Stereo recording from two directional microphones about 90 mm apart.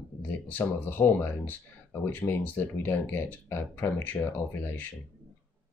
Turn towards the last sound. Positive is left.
turn(degrees=20)  # may be behind; listen again after turning